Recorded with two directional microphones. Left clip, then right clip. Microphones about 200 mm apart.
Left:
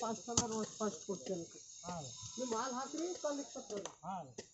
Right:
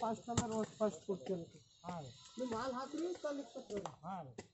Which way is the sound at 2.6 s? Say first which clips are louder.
Even; 40° right (ahead or behind).